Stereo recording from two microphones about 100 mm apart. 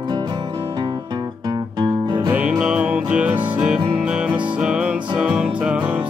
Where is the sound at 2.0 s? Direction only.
45° right (ahead or behind).